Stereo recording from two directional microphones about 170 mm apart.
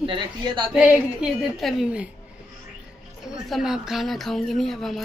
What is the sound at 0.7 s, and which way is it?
Speech, 5° right (ahead or behind).